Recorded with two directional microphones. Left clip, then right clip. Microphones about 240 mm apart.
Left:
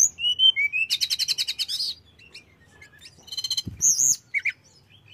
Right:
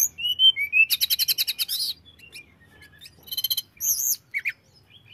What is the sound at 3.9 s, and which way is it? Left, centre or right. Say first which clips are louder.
Bird: left 5 dB; centre.